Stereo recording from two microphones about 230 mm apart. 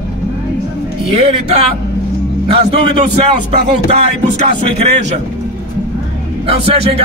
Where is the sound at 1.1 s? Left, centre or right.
Right.